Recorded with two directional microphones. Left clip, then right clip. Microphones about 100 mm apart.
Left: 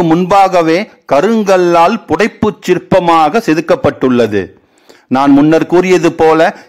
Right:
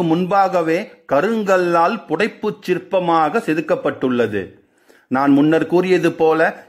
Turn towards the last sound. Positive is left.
turn(degrees=40)  # may be behind; listen again after turning